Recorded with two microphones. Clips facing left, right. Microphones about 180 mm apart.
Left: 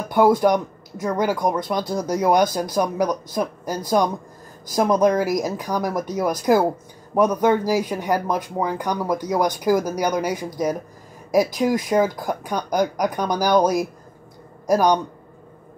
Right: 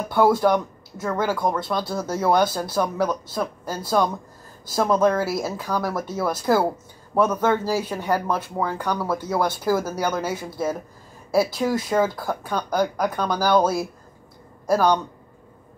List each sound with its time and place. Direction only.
0.1 s speech: 15° left (ahead or behind)